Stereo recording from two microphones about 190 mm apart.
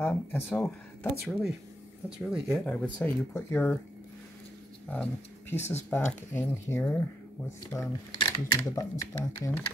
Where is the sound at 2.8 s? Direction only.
10° left (ahead or behind).